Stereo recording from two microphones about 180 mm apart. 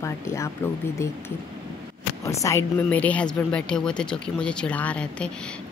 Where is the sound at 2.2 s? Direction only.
15° left (ahead or behind).